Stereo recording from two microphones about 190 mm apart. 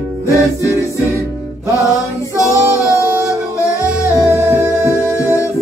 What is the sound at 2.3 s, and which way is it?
Music, 15° left (ahead or behind).